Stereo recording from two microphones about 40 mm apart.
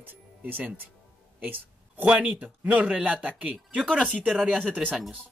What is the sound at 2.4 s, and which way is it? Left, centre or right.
Speech, right.